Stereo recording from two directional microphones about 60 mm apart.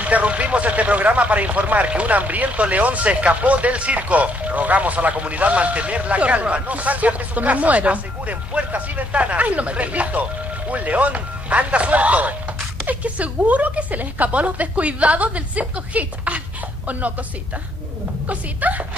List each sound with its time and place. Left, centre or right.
0.0 s speech: right
18.3 s speech: right